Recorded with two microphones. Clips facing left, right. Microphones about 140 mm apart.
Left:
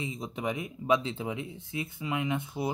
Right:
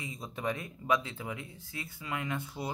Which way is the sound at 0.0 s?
20° left (ahead or behind).